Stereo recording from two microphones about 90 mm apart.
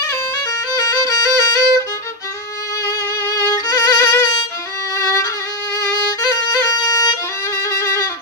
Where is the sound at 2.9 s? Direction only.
35° left (ahead or behind).